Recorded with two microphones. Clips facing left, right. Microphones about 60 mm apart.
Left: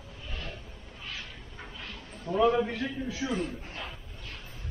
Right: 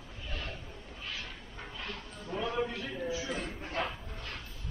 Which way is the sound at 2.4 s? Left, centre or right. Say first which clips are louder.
Left 9 dB; left.